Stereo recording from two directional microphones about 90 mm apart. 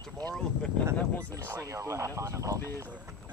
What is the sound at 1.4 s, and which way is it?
Speech, 30° right (ahead or behind).